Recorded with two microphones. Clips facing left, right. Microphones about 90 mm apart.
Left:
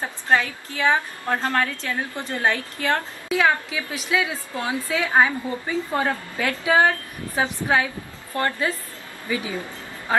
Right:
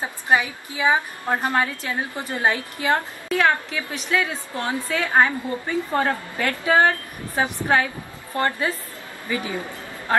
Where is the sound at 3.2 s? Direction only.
10° left (ahead or behind).